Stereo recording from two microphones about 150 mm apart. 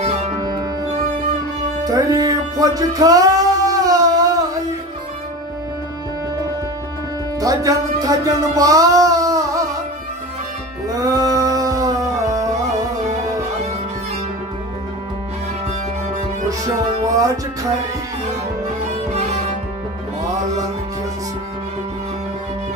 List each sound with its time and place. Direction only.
1.9 s music: 25° right (ahead or behind)
7.3 s music: 25° right (ahead or behind)
10.9 s music: 20° right (ahead or behind)
17.0 s music: 20° right (ahead or behind)
19.0 s music: 45° right (ahead or behind)